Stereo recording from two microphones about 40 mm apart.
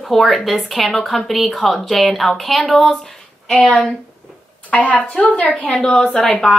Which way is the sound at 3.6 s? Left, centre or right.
Left.